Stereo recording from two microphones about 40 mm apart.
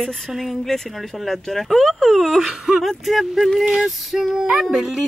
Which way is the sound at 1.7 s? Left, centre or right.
Centre.